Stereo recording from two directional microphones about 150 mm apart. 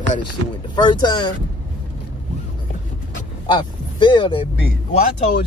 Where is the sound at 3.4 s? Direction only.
35° left (ahead or behind).